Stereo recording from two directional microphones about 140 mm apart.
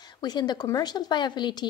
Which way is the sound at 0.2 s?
30° left (ahead or behind).